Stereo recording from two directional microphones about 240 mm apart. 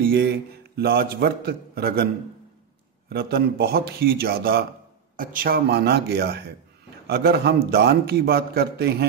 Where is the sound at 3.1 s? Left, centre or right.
Right.